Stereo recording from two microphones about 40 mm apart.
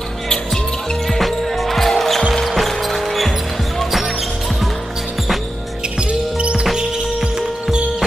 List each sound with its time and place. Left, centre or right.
1.1 s basketball bounce: centre
6.3 s music: right
6.6 s music: centre